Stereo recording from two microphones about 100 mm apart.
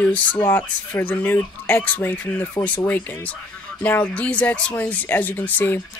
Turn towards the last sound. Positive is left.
turn(degrees=20)  # may be behind; listen again after turning